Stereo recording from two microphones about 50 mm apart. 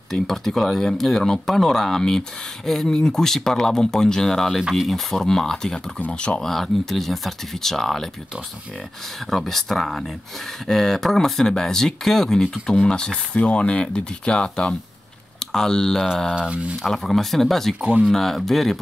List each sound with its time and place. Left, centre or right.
0.1 s speech: centre
5.9 s speech: left
6.4 s speech: centre
9.3 s speech: centre
16.3 s speech: right
16.8 s speech: centre